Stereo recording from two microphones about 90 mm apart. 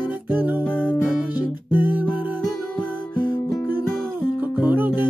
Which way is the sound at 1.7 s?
20° right (ahead or behind).